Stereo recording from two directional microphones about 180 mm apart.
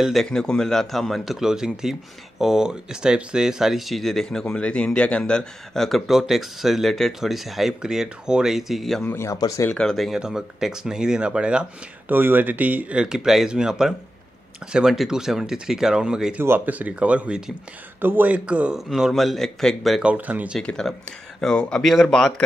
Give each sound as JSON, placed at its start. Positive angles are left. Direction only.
{"t": 0.0, "sound": "speech", "side_deg": 0}
{"t": 9.1, "sound": "speech", "side_deg": 15}
{"t": 9.7, "sound": "speech", "side_deg": 5}
{"t": 20.6, "sound": "speech", "side_deg": 5}